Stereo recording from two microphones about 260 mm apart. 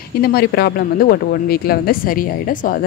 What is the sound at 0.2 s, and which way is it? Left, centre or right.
A woman's voice, left.